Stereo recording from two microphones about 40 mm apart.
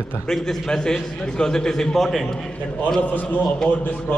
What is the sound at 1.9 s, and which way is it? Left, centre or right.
Speech, centre.